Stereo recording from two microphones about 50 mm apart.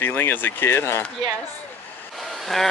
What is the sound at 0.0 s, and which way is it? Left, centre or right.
Speech, left.